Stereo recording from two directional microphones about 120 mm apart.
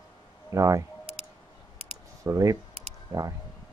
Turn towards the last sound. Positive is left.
turn(degrees=-30)  # may be behind; listen again after turning